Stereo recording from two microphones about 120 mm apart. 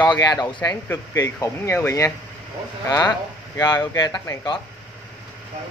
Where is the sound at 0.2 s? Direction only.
35° left (ahead or behind).